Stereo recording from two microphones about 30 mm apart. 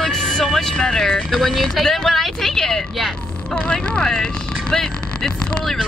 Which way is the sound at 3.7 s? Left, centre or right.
Left.